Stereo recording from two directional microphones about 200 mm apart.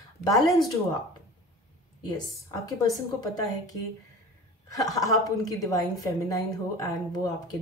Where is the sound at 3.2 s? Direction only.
15° left (ahead or behind).